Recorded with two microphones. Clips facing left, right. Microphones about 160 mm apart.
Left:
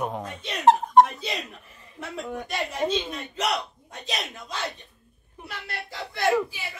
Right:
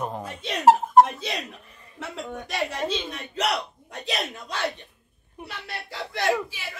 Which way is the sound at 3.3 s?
70° right (ahead or behind).